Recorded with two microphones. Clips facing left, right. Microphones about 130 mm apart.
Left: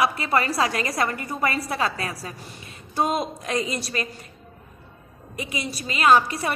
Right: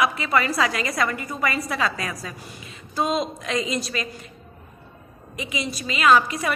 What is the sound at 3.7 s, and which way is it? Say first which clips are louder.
Speech: right 1 dB; 40° left (ahead or behind).